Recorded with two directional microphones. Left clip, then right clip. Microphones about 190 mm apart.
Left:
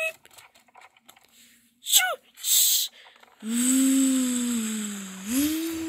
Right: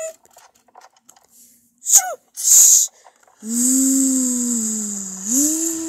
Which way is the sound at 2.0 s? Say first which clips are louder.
Right 2 dB; centre (ahead or behind).